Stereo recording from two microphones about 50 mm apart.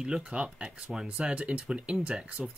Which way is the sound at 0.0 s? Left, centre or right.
Centre.